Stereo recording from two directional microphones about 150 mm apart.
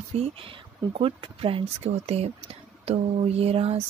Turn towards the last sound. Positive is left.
turn(degrees=-40)  # may be behind; listen again after turning